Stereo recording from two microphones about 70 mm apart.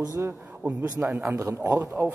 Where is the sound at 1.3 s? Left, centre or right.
Right.